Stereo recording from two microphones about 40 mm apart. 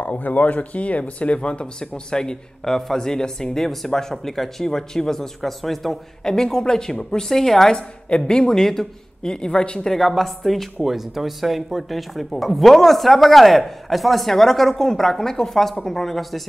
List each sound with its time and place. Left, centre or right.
0.0 s a woman's voice: left
9.8 s speech: centre
10.8 s speech: centre